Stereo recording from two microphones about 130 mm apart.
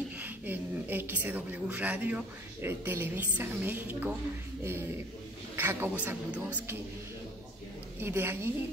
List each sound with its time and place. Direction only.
0.2 s a woman's voice: 15° right (ahead or behind)
8.0 s a woman's voice: 20° right (ahead or behind)